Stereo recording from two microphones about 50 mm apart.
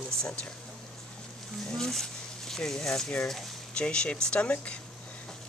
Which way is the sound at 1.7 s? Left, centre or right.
Centre.